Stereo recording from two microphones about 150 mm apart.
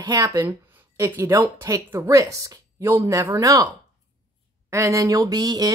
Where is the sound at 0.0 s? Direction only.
25° right (ahead or behind).